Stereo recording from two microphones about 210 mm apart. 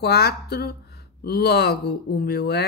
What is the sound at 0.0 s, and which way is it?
Speech, 50° left (ahead or behind).